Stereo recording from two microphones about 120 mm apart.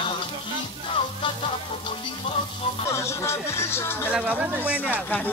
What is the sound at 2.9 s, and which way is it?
Speech, 25° left (ahead or behind).